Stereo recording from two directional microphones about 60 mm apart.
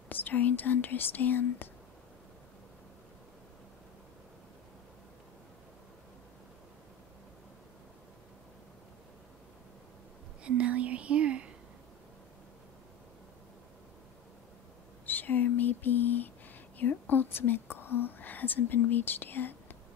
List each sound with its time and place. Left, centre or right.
0.1 s speech: left
10.4 s whispering: right
15.0 s a sound: left
16.7 s speech: left